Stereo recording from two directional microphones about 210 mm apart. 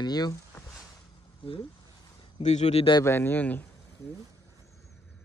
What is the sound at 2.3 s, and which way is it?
Speech, 30° left (ahead or behind).